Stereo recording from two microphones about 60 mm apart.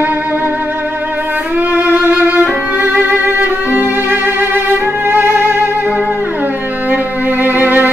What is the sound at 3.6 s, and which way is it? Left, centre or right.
Music, right.